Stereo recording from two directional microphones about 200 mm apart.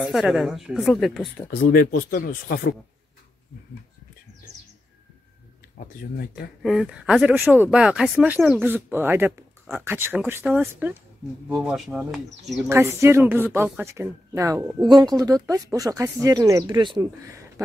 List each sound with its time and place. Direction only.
0.0 s speech: centre (ahead or behind)
1.5 s speech: 45° left (ahead or behind)
6.6 s speech: centre (ahead or behind)
12.6 s speech: 15° right (ahead or behind)